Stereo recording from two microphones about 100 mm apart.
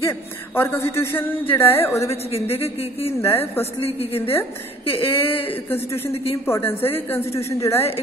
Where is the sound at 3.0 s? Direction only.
25° left (ahead or behind).